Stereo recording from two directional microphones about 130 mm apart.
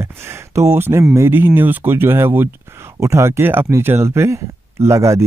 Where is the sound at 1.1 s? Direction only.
20° right (ahead or behind).